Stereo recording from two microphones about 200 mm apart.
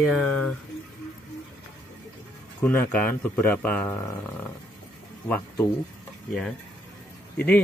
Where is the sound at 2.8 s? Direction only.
45° left (ahead or behind).